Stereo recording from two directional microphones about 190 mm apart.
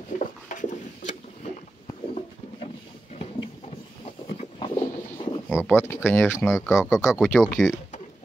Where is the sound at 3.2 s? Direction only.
30° left (ahead or behind).